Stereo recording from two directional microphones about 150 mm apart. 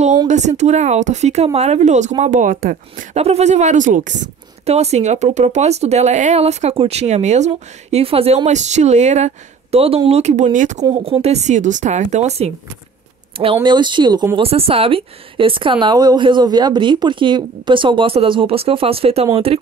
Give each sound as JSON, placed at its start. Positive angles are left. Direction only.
{"t": 0.3, "sound": "speech", "side_deg": -50}
{"t": 3.2, "sound": "speech", "side_deg": -45}
{"t": 8.5, "sound": "speech", "side_deg": -50}
{"t": 10.9, "sound": "speech", "side_deg": -40}
{"t": 13.4, "sound": "speech", "side_deg": -35}